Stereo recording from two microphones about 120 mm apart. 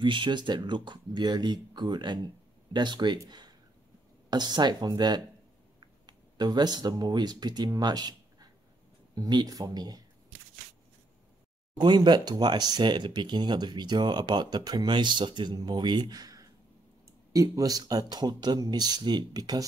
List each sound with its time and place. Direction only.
0.0 s speech: 40° right (ahead or behind)
11.8 s speech: 35° right (ahead or behind)